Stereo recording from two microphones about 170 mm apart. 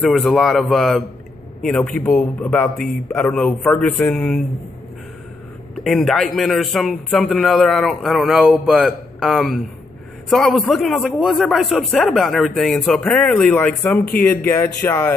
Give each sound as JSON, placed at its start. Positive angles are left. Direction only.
{"t": 0.0, "sound": "a man's voice", "side_deg": 0}
{"t": 5.9, "sound": "a man's voice", "side_deg": 0}